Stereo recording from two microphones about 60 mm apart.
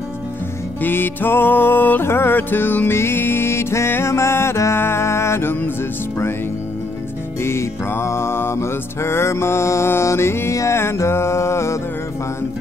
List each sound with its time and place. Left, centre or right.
0.8 s music: left
7.4 s music: left
10.5 s music: left
10.8 s music: left